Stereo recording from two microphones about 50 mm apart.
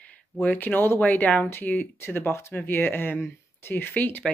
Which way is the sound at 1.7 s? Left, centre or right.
Centre.